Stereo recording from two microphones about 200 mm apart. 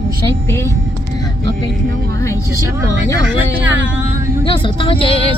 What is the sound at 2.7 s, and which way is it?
Speech, 10° right (ahead or behind).